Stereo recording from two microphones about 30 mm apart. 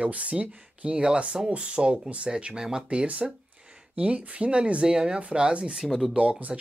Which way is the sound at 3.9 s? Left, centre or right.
Right.